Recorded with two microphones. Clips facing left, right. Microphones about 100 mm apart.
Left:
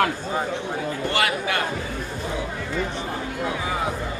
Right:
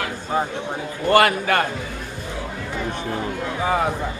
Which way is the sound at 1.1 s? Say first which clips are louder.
Right 10 dB; 50° right (ahead or behind).